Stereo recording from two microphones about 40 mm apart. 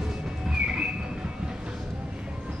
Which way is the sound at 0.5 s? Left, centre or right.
Right.